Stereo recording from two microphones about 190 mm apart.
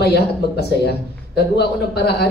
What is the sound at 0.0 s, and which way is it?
Speech, 60° left (ahead or behind).